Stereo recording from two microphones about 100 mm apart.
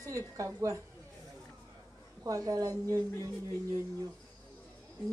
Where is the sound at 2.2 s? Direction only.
35° right (ahead or behind).